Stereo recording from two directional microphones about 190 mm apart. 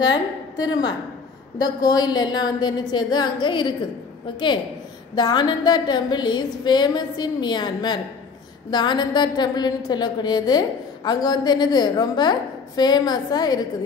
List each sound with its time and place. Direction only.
0.6 s a woman's voice: 20° left (ahead or behind)
5.1 s a woman's voice: 20° left (ahead or behind)